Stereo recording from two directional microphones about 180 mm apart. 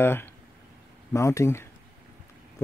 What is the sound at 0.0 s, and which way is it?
Speech, 15° left (ahead or behind).